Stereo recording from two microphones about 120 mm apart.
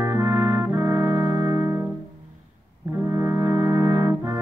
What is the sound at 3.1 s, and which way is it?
Brass instrument, 25° right (ahead or behind).